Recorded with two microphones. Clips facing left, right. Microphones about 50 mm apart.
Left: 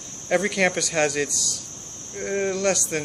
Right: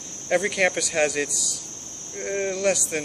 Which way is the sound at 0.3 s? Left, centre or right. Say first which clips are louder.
Even; centre.